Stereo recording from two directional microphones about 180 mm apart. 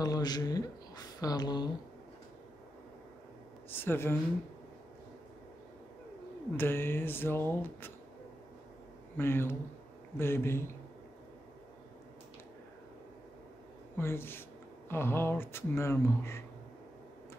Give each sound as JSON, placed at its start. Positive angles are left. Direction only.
{"t": 0.0, "sound": "a woman's voice", "side_deg": 20}
{"t": 3.8, "sound": "speech", "side_deg": 15}
{"t": 6.5, "sound": "speech", "side_deg": 10}
{"t": 9.1, "sound": "speech", "side_deg": 10}
{"t": 13.9, "sound": "speech", "side_deg": 15}